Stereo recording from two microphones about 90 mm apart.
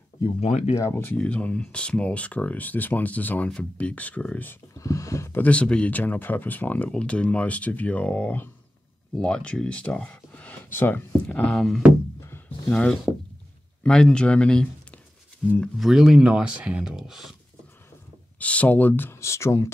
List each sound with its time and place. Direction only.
0.7 s speech: 30° left (ahead or behind)
1.1 s speech: 15° left (ahead or behind)
4.7 s a sound: 35° left (ahead or behind)
5.4 s speech: 15° left (ahead or behind); by 17.3 s 5° right (ahead or behind)
18.4 s speech: 15° left (ahead or behind); by 19.7 s 35° left (ahead or behind)